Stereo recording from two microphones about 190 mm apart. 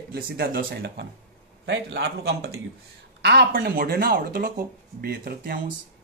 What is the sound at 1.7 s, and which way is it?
Speech, 65° right (ahead or behind).